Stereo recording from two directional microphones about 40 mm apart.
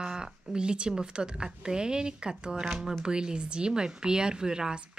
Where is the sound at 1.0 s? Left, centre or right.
Right.